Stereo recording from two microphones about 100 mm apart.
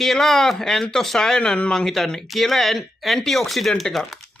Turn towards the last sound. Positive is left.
turn(degrees=0)  # may be behind; listen again after turning